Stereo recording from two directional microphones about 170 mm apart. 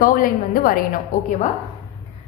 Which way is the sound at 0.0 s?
55° left (ahead or behind).